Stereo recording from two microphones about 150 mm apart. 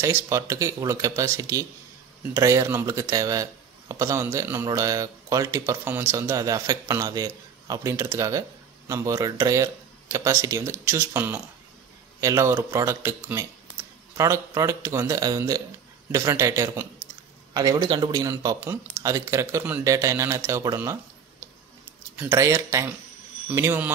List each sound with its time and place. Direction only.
0.0 s a man's voice: 20° right (ahead or behind)